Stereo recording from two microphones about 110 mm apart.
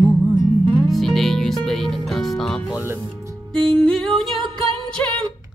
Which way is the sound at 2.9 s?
25° right (ahead or behind).